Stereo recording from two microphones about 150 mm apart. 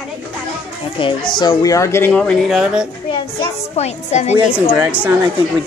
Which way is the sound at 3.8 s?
45° left (ahead or behind).